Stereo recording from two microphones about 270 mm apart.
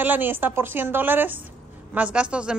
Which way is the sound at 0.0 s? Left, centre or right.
Centre.